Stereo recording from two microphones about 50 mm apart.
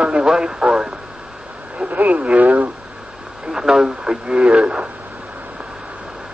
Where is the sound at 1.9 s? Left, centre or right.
Right.